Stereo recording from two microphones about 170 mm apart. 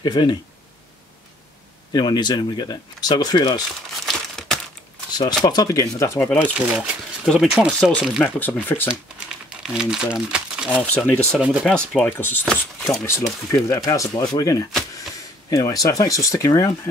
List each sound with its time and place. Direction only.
0.0 s speech: 25° left (ahead or behind)
1.9 s speech: 25° left (ahead or behind)
4.0 s crumpling: centre (ahead or behind)
5.4 s speech: 25° left (ahead or behind)
6.7 s speech: 5° right (ahead or behind); by 8.9 s 10° left (ahead or behind)
9.6 s speech: 5° right (ahead or behind)
10.9 s speech: 5° left (ahead or behind)
11.3 s speech: 5° right (ahead or behind)
12.4 s speech: centre (ahead or behind)
13.0 s speech: 15° left (ahead or behind)